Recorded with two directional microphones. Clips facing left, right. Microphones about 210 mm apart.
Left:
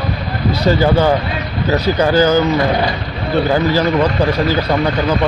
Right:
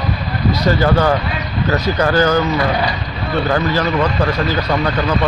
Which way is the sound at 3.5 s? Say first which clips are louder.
Left 2 dB; 10° left (ahead or behind).